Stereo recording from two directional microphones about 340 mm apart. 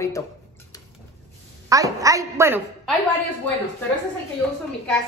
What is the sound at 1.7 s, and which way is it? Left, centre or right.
A woman's voice, centre.